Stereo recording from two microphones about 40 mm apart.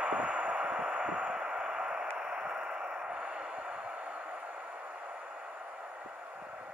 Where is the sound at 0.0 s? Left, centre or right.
Right.